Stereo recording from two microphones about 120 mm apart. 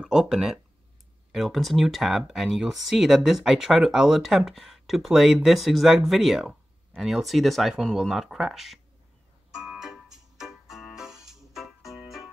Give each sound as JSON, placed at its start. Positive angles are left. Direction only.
{"t": 0.0, "sound": "speech", "side_deg": -5}
{"t": 9.6, "sound": "keyboard", "side_deg": -5}